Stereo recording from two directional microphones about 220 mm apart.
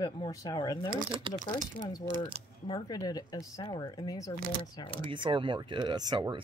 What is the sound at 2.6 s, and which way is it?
Speech, 20° left (ahead or behind).